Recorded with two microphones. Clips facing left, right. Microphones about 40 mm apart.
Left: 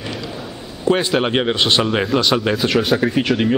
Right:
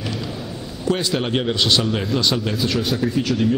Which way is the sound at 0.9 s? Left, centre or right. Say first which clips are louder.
Left 5 dB; left.